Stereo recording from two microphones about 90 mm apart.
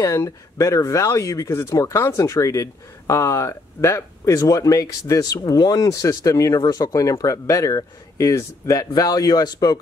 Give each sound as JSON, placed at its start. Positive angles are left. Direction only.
{"t": 0.0, "sound": "speech", "side_deg": 35}